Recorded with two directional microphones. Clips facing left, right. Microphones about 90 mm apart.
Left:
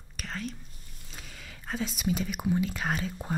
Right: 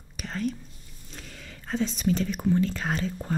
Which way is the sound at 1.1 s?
5° left (ahead or behind).